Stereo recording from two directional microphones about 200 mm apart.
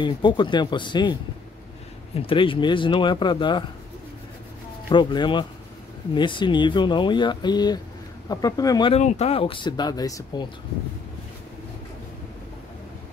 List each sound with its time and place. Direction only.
0.0 s speech: 25° left (ahead or behind)
2.1 s speech: 25° left (ahead or behind)
4.8 s speech: 20° left (ahead or behind)
8.9 s speech: 35° left (ahead or behind)